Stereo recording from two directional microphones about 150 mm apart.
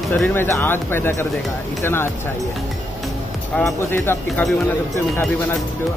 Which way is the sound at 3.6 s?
15° left (ahead or behind).